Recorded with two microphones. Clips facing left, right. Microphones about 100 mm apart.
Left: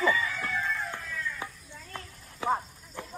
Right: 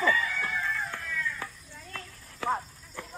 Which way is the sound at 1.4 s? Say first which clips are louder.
Left 1 dB; 15° left (ahead or behind).